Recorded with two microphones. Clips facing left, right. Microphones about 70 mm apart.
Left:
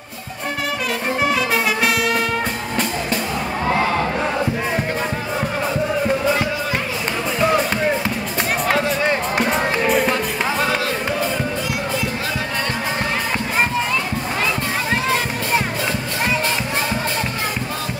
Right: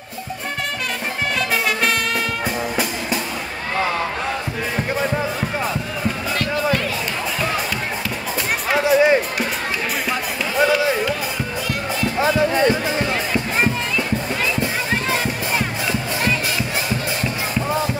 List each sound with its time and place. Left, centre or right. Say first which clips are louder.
1.5 s music: left 1 dB; centre
8.7 s music: right 9 dB; centre
9.4 s music: left 5 dB; centre
12.2 s music: right 7 dB; centre